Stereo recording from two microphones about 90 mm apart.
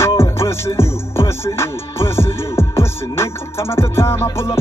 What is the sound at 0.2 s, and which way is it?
Music, 30° left (ahead or behind).